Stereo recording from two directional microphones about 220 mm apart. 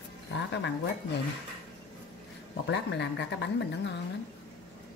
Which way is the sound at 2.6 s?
50° left (ahead or behind).